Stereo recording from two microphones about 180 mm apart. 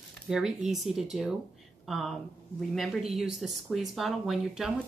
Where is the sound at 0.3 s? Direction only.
5° right (ahead or behind).